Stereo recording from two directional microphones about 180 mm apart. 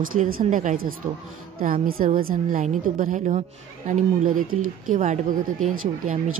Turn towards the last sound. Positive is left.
turn(degrees=-45)  # may be behind; listen again after turning